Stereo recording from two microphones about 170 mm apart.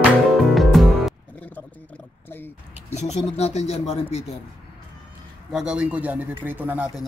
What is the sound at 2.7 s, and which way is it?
Speech, 40° left (ahead or behind).